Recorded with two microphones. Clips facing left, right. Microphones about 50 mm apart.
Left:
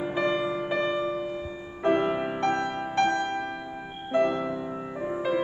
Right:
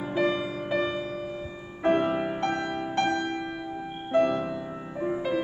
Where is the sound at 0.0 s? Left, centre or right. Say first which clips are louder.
Even; centre.